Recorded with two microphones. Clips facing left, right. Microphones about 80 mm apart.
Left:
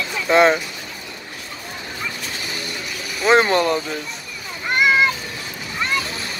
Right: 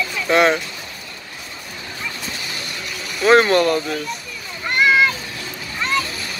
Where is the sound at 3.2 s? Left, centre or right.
Centre.